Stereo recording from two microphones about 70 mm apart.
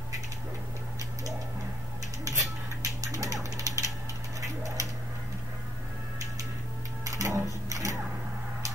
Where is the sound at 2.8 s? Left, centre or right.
Right.